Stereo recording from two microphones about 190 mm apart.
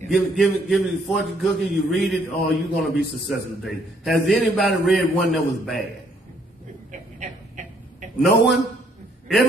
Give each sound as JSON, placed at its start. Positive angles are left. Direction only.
{"t": 0.1, "sound": "a man's voice", "side_deg": 0}
{"t": 7.2, "sound": "a sound", "side_deg": -40}
{"t": 8.2, "sound": "a man's voice", "side_deg": 0}